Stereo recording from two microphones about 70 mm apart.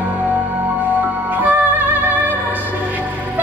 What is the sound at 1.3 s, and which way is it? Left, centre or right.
Music, right.